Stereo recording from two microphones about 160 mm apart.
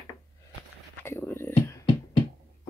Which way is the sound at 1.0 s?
15° left (ahead or behind).